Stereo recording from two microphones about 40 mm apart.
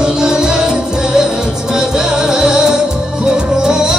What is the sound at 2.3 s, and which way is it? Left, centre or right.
Music, centre.